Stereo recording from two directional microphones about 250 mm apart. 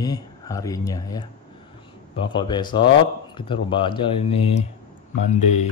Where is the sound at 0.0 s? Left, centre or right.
Centre.